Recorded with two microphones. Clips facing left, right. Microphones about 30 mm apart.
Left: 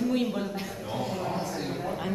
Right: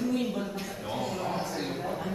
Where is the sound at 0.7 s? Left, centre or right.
Centre.